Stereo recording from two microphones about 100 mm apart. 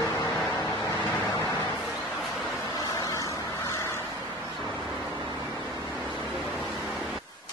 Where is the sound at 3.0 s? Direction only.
30° left (ahead or behind).